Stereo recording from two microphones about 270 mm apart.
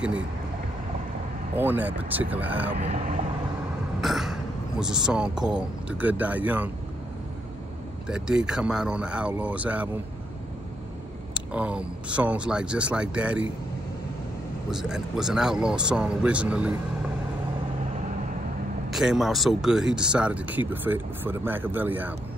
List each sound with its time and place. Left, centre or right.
1.6 s speech: centre
2.8 s speech: right
4.0 s speech: centre
8.1 s speech: centre
11.3 s speech: centre
14.7 s speech: centre
18.9 s speech: centre